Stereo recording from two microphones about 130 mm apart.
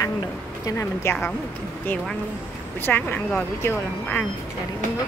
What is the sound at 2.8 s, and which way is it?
Speech, 10° left (ahead or behind).